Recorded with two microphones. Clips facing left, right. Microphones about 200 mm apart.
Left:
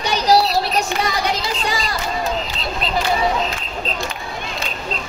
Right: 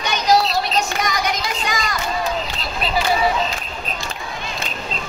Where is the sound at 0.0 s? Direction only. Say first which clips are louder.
Left 1 dB; 35° left (ahead or behind).